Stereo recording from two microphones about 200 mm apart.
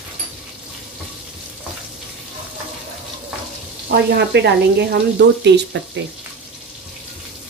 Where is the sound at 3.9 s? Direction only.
55° right (ahead or behind).